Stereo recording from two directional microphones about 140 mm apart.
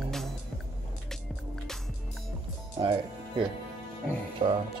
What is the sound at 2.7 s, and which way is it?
Music, 35° right (ahead or behind).